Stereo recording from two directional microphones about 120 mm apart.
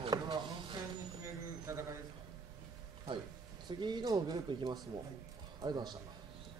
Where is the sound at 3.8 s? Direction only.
35° right (ahead or behind).